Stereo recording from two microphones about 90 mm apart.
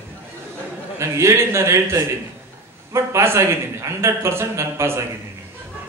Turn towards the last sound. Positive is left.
turn(degrees=-30)  # may be behind; listen again after turning